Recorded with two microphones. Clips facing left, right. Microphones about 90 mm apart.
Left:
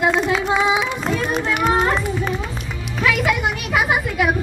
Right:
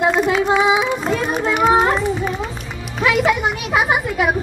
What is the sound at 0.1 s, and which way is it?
Female singing, 5° right (ahead or behind).